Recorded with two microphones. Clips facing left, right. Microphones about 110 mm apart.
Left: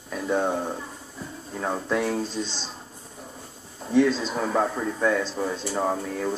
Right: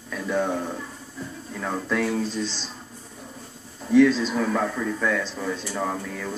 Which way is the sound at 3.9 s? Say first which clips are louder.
Right 4 dB; 25° left (ahead or behind).